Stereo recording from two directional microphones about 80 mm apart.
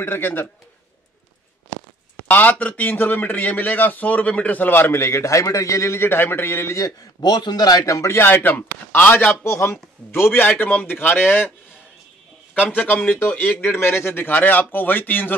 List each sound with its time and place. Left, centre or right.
0.0 s a man's voice: left
2.2 s a man's voice: left
7.2 s a man's voice: left
8.2 s a man's voice: left
9.4 s a man's voice: left
12.5 s a man's voice: centre